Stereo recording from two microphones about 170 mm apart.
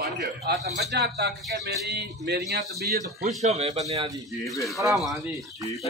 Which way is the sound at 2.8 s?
60° right (ahead or behind).